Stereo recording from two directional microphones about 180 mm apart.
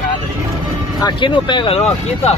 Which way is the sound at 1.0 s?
25° left (ahead or behind).